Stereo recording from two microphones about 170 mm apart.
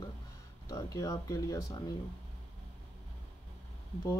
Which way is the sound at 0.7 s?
20° left (ahead or behind).